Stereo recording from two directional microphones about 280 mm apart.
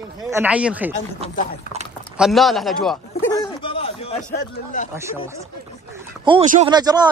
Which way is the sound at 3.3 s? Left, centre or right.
Centre.